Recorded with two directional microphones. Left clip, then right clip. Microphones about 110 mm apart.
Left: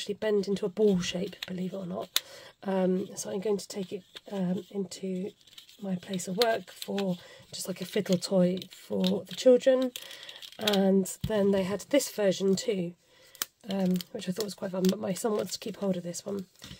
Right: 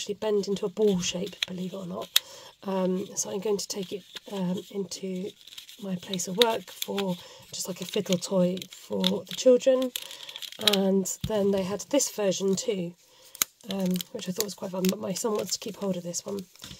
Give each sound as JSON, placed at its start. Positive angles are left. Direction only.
{"t": 0.0, "sound": "speech", "side_deg": -20}
{"t": 7.5, "sound": "speech", "side_deg": -20}
{"t": 10.8, "sound": "speech", "side_deg": -20}
{"t": 13.4, "sound": "a sound", "side_deg": -25}
{"t": 13.9, "sound": "speech", "side_deg": -15}